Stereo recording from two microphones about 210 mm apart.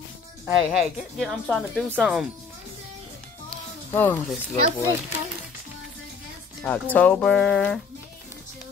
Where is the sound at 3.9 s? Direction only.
10° left (ahead or behind).